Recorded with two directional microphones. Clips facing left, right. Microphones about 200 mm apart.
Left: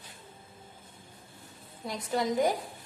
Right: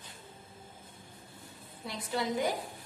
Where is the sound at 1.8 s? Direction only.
45° left (ahead or behind).